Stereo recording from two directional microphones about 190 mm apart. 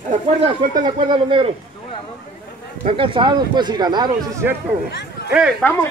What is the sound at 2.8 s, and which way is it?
Speech, 30° right (ahead or behind).